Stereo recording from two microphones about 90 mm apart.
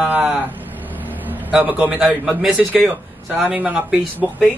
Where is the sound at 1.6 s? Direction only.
20° right (ahead or behind).